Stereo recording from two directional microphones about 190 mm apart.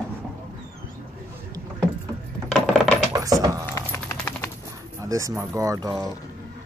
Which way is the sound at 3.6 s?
10° left (ahead or behind).